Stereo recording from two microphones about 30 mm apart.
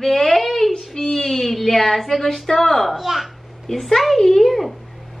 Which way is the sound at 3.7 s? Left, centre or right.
Centre.